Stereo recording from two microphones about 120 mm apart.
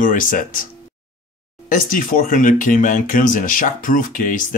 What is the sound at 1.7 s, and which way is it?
Speech, 90° left.